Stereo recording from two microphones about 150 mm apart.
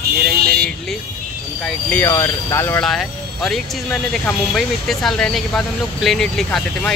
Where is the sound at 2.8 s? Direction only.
Centre (ahead or behind).